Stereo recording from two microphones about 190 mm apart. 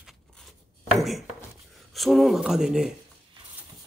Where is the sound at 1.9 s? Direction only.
Centre (ahead or behind).